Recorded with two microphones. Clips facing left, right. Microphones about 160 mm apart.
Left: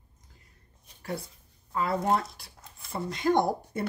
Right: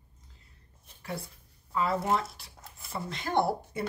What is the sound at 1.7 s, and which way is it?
Speech, 40° left (ahead or behind).